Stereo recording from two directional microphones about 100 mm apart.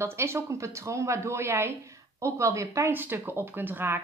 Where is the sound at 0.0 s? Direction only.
25° right (ahead or behind).